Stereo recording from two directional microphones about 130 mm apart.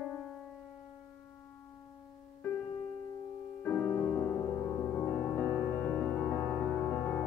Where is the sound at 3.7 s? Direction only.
15° left (ahead or behind).